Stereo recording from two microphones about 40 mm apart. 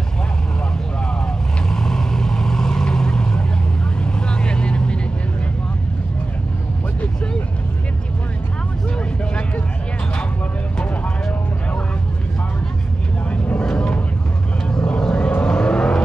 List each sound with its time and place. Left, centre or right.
1.7 s vehicle: centre
13.6 s vehicle: left